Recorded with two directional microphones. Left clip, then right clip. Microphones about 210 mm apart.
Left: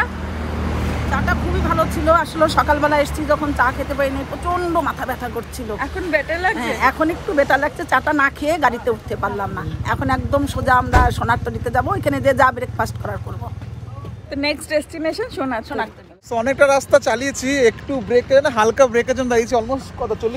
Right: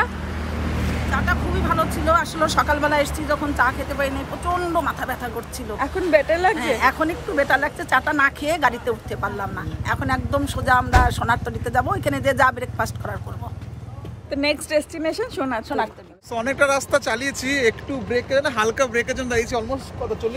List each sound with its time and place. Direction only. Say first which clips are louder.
0.3 s vehicle: left 3 dB; centre (ahead or behind)
1.1 s speech: left 2 dB; 10° right (ahead or behind)
5.8 s speech: right 3 dB; 25° right (ahead or behind)
6.5 s speech: left 1 dB; 10° right (ahead or behind)
14.3 s speech: left 1 dB; 15° right (ahead or behind)
16.3 s speech: left 5 dB; 10° right (ahead or behind)